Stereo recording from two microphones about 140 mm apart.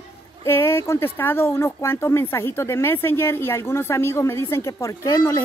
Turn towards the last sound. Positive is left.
turn(degrees=25)  # may be behind; listen again after turning